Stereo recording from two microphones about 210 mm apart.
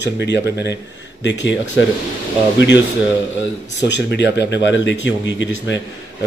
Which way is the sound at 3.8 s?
55° left (ahead or behind).